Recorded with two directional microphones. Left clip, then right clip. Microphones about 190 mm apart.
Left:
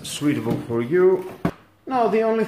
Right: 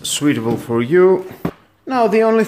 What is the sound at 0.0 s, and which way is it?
Speech, 40° right (ahead or behind).